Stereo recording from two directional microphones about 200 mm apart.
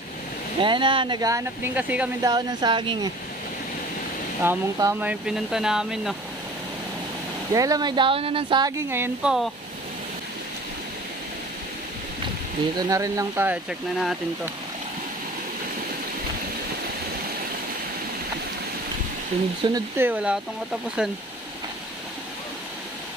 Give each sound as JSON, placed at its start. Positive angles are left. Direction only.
{"t": 0.6, "sound": "speech", "side_deg": -25}
{"t": 2.2, "sound": "speech", "side_deg": -20}
{"t": 4.4, "sound": "speech", "side_deg": -15}
{"t": 7.5, "sound": "speech", "side_deg": -15}
{"t": 12.7, "sound": "speech", "side_deg": -15}
{"t": 19.6, "sound": "speech", "side_deg": -15}